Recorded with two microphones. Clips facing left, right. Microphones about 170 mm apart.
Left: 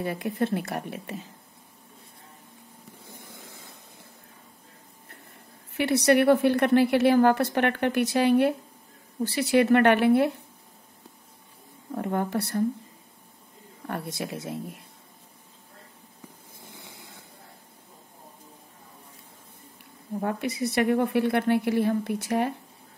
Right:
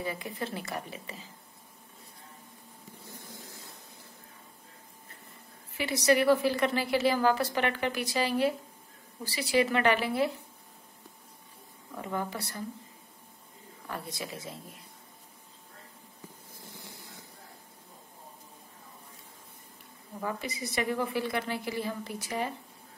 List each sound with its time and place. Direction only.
0.0 s a woman's voice: 60° left (ahead or behind)
5.7 s a woman's voice: 60° left (ahead or behind)
12.0 s a woman's voice: 55° left (ahead or behind)
13.8 s a woman's voice: 60° left (ahead or behind)
20.2 s a woman's voice: 60° left (ahead or behind)